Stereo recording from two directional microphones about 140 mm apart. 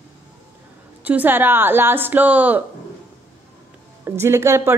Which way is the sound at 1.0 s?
10° right (ahead or behind).